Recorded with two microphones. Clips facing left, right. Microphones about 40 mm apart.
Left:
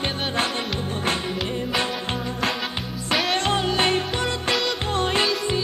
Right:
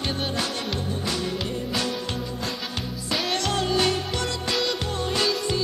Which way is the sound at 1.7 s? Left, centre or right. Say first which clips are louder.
Left 3 dB; left.